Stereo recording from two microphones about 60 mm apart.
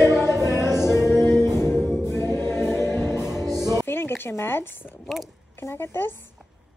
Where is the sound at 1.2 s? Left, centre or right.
Left.